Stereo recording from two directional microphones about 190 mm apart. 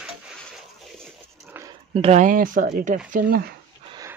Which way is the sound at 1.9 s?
35° right (ahead or behind).